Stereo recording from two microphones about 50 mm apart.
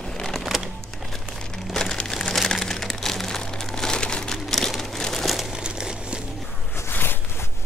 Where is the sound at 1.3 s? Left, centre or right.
Centre.